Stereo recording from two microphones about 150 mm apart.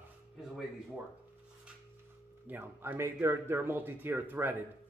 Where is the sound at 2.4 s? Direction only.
15° right (ahead or behind).